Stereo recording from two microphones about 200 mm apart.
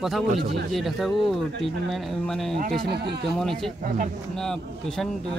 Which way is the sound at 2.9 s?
55° right (ahead or behind).